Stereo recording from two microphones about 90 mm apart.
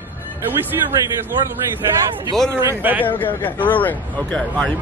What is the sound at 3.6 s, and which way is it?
Speech, 20° left (ahead or behind).